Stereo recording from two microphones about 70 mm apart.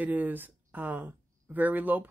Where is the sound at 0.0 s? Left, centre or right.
Right.